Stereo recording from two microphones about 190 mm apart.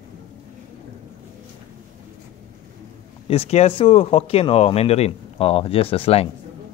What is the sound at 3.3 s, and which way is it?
Speech, 35° left (ahead or behind).